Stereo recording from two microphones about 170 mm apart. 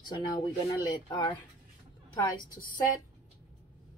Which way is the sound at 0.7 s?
25° left (ahead or behind).